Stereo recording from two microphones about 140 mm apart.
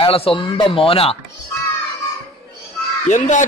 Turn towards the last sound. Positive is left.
turn(degrees=60)  # may be behind; listen again after turning